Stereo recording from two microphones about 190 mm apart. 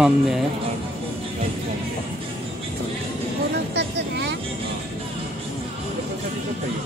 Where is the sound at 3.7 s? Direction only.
65° right (ahead or behind).